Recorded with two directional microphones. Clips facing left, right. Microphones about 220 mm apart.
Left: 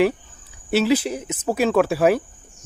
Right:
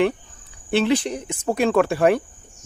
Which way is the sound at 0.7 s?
5° left (ahead or behind).